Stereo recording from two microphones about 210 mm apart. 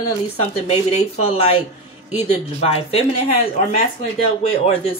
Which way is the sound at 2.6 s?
30° left (ahead or behind).